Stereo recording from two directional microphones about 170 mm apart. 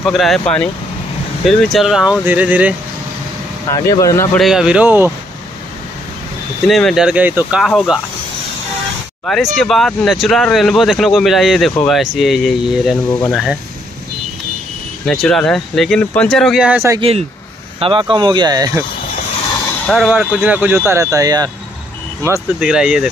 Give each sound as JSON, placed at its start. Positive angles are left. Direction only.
{"t": 0.0, "sound": "speech", "side_deg": 0}
{"t": 3.9, "sound": "speech", "side_deg": 20}
{"t": 4.4, "sound": "speech", "side_deg": 0}
{"t": 6.7, "sound": "speech", "side_deg": 0}
{"t": 9.2, "sound": "speech", "side_deg": 0}
{"t": 15.0, "sound": "speech", "side_deg": 5}
{"t": 17.7, "sound": "speech", "side_deg": -30}
{"t": 19.9, "sound": "speech", "side_deg": -5}
{"t": 22.6, "sound": "speech", "side_deg": -5}